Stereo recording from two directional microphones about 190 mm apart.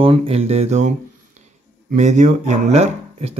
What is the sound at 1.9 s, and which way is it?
Speech, 40° right (ahead or behind).